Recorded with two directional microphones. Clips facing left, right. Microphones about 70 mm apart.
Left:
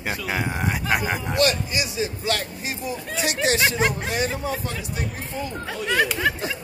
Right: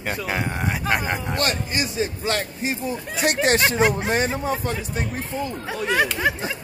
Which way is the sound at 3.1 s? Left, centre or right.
Right.